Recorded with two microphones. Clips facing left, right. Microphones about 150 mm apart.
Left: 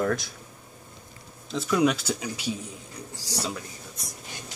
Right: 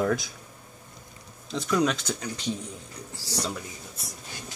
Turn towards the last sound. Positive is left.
turn(degrees=0)  # may be behind; listen again after turning